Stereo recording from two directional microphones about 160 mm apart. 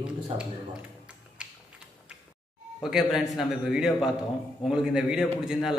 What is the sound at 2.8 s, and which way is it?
A man's voice, 5° right (ahead or behind).